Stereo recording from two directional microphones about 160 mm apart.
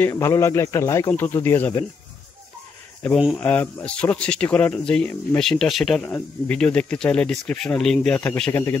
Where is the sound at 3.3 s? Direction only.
10° left (ahead or behind).